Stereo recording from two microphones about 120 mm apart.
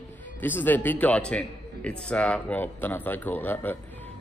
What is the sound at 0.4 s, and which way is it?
Speech, 15° left (ahead or behind).